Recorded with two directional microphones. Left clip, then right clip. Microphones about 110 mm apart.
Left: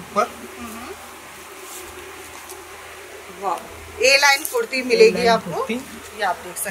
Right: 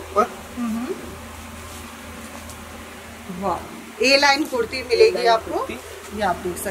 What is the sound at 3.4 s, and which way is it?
A woman's voice, 5° right (ahead or behind).